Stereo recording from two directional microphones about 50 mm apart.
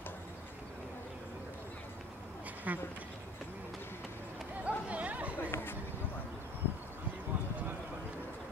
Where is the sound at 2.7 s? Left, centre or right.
Right.